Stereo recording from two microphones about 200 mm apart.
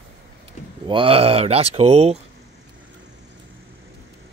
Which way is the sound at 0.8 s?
25° right (ahead or behind).